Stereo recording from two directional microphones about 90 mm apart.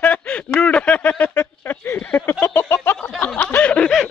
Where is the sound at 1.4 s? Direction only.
25° left (ahead or behind).